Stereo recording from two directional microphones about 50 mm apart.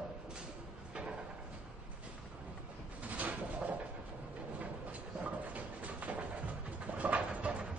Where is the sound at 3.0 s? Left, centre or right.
Right.